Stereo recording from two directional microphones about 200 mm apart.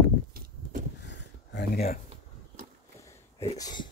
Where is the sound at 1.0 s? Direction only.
60° left (ahead or behind).